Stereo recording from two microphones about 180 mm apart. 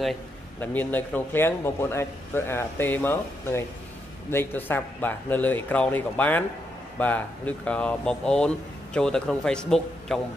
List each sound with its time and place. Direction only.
0.6 s a man's voice: 10° left (ahead or behind)